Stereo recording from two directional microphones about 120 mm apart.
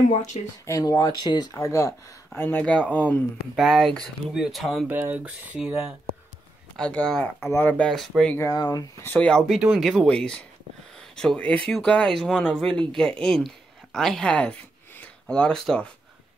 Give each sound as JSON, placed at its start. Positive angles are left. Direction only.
{"t": 0.1, "sound": "speech", "side_deg": 75}
{"t": 0.7, "sound": "speech", "side_deg": 30}
{"t": 3.5, "sound": "speech", "side_deg": 0}
{"t": 4.8, "sound": "speech", "side_deg": -15}
{"t": 6.8, "sound": "speech", "side_deg": 10}
{"t": 8.4, "sound": "speech", "side_deg": 30}
{"t": 9.0, "sound": "speech", "side_deg": 10}
{"t": 9.5, "sound": "speech", "side_deg": 0}